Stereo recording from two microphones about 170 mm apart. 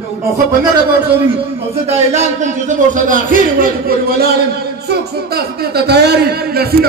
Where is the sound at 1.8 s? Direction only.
40° right (ahead or behind).